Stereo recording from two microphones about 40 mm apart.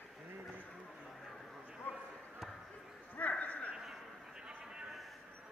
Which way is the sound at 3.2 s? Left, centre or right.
Left.